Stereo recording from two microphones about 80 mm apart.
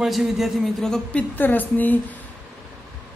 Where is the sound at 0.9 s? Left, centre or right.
Centre.